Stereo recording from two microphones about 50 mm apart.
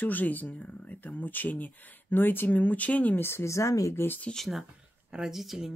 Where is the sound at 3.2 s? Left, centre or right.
Left.